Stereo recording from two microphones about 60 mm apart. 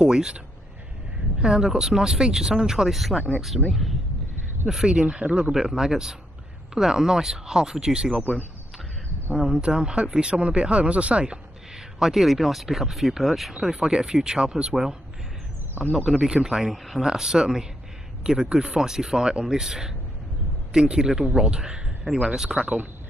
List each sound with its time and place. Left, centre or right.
0.0 s speech: centre
1.4 s speech: centre
5.5 s speech: centre
9.3 s speech: centre
13.6 s speech: centre
15.8 s speech: right
16.1 s speech: centre